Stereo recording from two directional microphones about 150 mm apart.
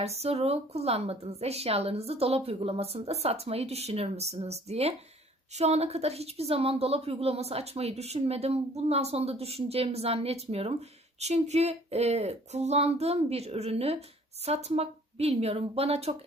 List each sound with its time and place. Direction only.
0.0 s a woman's voice: 45° right (ahead or behind)